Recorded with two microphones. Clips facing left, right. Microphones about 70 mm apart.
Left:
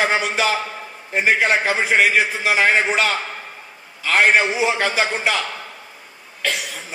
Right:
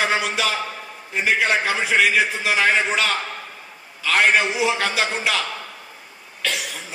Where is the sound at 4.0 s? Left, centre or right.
Left.